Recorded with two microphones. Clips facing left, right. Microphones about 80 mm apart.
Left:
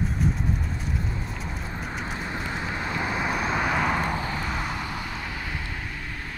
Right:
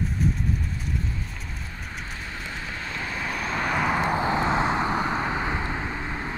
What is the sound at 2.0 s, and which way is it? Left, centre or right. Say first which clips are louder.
Vehicle: left 4 dB; left.